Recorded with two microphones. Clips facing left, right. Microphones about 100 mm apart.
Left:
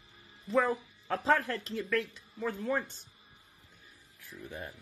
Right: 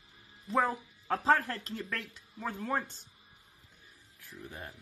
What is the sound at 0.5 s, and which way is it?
Speech, 40° right (ahead or behind).